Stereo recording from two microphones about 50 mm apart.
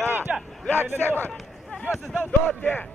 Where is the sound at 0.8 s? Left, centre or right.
Right.